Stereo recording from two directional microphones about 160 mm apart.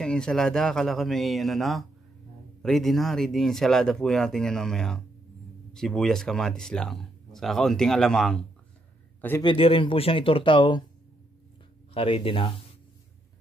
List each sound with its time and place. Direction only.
0.0 s speech: 5° left (ahead or behind)
9.4 s speech: 35° left (ahead or behind)
11.9 s speech: 35° left (ahead or behind)